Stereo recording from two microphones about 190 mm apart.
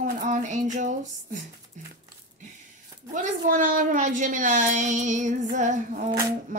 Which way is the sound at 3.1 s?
40° right (ahead or behind).